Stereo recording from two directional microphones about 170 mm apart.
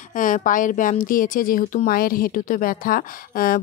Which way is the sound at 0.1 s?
50° left (ahead or behind).